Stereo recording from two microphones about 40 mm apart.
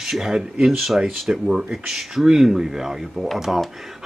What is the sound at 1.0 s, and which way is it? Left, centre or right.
Speech, right.